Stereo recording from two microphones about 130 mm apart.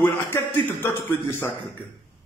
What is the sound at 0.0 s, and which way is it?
A man's voice, 15° left (ahead or behind).